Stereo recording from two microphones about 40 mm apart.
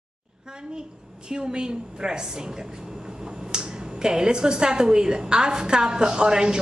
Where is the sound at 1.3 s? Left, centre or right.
Right.